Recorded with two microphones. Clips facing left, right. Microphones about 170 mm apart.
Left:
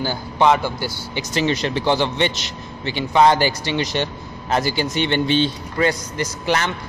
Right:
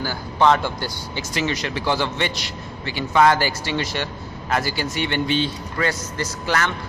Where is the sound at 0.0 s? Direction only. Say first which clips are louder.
Left 1 dB; 20° left (ahead or behind).